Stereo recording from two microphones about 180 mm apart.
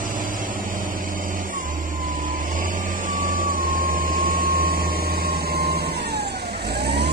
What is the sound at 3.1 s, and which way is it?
Vehicle, 50° right (ahead or behind).